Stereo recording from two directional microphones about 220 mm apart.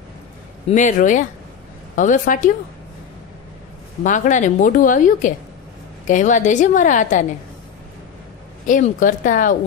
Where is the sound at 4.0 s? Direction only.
35° left (ahead or behind).